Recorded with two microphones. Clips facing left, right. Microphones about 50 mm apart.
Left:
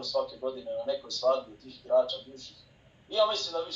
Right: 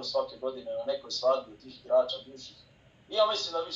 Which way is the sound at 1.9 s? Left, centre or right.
Right.